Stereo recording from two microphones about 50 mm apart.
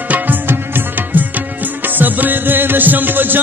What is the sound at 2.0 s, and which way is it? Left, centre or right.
Music, right.